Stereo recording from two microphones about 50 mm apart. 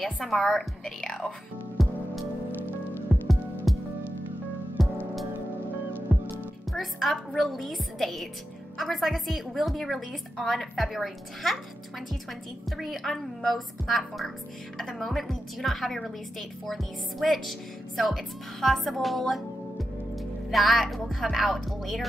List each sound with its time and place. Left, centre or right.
0.0 s a woman's voice: centre
1.8 s music: centre
3.1 s music: centre
4.8 s music: centre
6.1 s music: centre
6.7 s a woman's voice: centre